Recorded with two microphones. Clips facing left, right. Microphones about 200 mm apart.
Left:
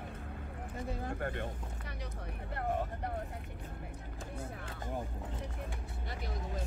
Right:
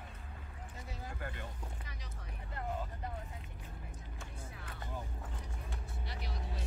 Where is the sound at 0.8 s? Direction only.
55° left (ahead or behind).